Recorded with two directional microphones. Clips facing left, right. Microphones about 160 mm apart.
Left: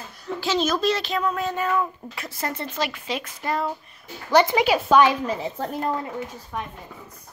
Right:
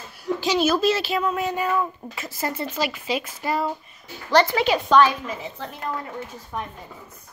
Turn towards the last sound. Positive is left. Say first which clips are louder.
# even
turn(degrees=0)  # may be behind; listen again after turning